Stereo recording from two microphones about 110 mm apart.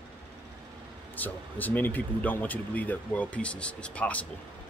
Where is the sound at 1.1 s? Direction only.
15° left (ahead or behind).